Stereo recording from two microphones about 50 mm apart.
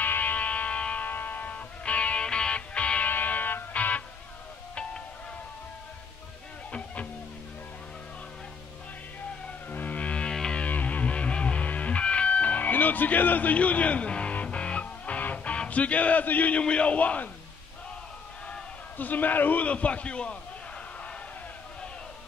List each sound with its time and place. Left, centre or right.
0.0 s music: left
1.0 s music: left
3.1 s music: left
9.7 s music: left; by 10.6 s centre
10.6 s music: left
16.6 s a man's voice: left
18.9 s a man's voice: left